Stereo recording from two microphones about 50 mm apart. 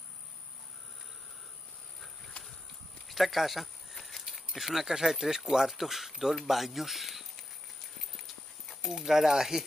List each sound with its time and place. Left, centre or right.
3.1 s a sound: centre
4.5 s speech: centre
8.8 s speech: centre